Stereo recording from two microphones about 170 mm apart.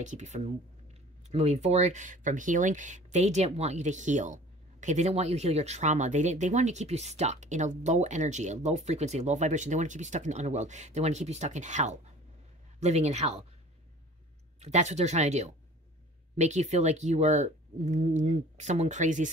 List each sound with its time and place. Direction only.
0.0 s speech: 45° right (ahead or behind)
14.6 s speech: 40° right (ahead or behind)